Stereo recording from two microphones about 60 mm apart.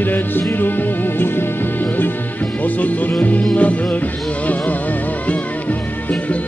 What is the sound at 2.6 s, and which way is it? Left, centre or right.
Music, left.